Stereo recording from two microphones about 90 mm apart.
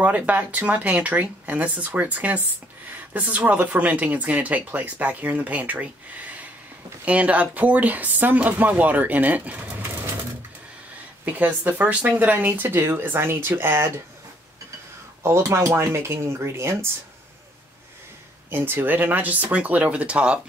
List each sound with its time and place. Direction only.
0.0 s speech: 15° right (ahead or behind)
9.8 s sewing machine: 25° right (ahead or behind)
11.2 s speech: 20° right (ahead or behind)
15.2 s speech: 30° right (ahead or behind)
18.5 s speech: 25° right (ahead or behind)